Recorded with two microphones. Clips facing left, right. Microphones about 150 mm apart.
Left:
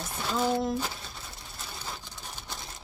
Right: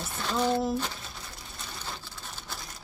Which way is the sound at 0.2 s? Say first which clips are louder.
Right 1 dB; 5° left (ahead or behind).